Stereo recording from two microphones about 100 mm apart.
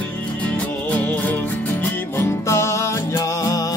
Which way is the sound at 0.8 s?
15° left (ahead or behind).